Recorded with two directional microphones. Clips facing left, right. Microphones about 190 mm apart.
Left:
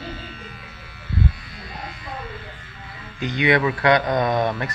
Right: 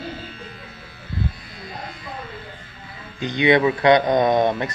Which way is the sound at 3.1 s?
20° right (ahead or behind).